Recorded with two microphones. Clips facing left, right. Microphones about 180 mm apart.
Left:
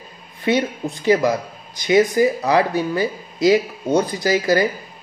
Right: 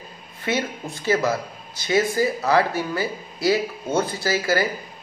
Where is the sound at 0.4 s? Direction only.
15° left (ahead or behind).